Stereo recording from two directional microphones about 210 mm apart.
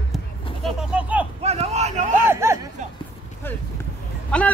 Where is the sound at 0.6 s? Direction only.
5° right (ahead or behind).